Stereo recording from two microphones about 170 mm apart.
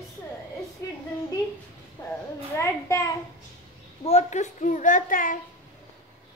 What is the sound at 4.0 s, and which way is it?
A child's voice, 40° left (ahead or behind).